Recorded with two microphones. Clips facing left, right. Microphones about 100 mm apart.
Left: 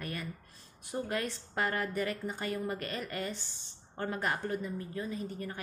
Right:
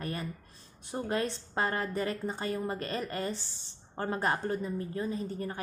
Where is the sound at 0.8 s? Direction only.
30° right (ahead or behind).